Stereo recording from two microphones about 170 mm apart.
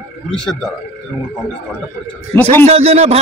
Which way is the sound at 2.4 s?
35° right (ahead or behind).